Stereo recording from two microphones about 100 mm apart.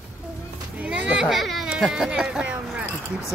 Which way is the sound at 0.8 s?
10° right (ahead or behind).